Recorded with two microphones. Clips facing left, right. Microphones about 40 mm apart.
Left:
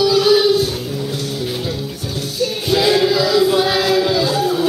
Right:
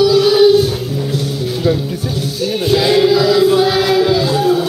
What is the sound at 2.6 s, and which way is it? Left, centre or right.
Music, centre.